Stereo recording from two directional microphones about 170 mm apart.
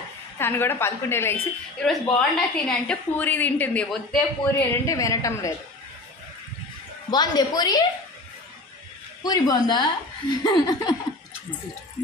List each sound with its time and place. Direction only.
0.4 s a woman's voice: 15° left (ahead or behind)
4.8 s a woman's voice: 20° left (ahead or behind)
7.1 s a woman's voice: 25° left (ahead or behind)
9.2 s a woman's voice: 20° left (ahead or behind)